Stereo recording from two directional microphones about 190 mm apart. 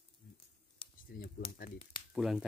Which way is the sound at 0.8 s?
25° left (ahead or behind).